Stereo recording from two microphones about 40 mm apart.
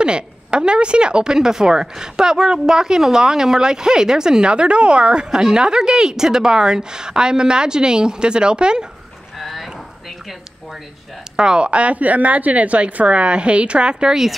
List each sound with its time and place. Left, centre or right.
0.0 s speech: right
9.4 s a sound: centre
11.3 s speech: right